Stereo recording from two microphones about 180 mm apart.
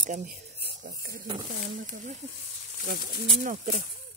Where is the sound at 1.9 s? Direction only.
45° right (ahead or behind).